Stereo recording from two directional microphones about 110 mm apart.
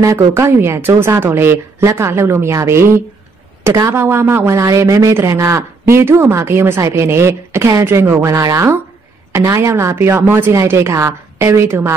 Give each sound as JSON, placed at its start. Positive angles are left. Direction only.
{"t": 0.0, "sound": "speech", "side_deg": -30}